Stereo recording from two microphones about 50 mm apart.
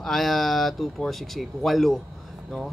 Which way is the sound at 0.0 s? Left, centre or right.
Centre.